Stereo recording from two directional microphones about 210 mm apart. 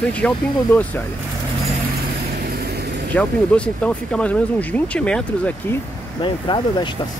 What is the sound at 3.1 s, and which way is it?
Speech, 5° left (ahead or behind).